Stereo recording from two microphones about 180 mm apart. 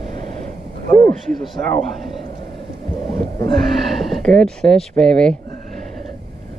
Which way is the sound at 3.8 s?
Centre (ahead or behind).